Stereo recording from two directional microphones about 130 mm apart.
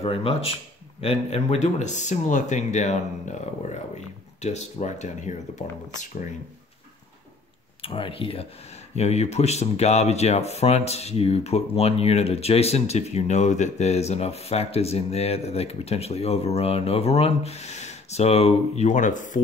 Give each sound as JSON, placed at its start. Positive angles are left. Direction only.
{"t": 0.0, "sound": "speech", "side_deg": 45}
{"t": 7.8, "sound": "speech", "side_deg": 45}
{"t": 8.9, "sound": "speech", "side_deg": 55}